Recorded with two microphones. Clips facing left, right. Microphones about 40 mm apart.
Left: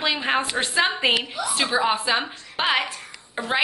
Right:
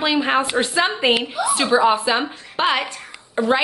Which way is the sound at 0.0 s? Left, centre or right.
Centre.